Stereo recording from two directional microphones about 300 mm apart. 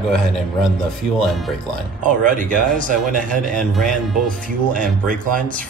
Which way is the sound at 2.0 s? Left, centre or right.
Right.